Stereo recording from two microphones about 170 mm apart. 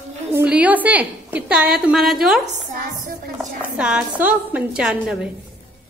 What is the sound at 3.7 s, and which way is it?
A woman's voice, 5° right (ahead or behind).